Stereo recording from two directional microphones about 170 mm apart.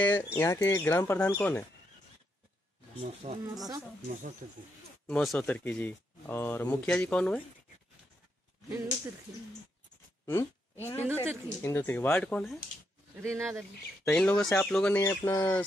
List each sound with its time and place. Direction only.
0.0 s speech: 15° left (ahead or behind)
3.0 s speech: 40° right (ahead or behind)
5.0 s speech: 5° left (ahead or behind)
8.6 s speech: 15° right (ahead or behind)
10.2 s speech: 15° left (ahead or behind)
13.1 s speech: 15° right (ahead or behind)
14.0 s speech: 5° left (ahead or behind)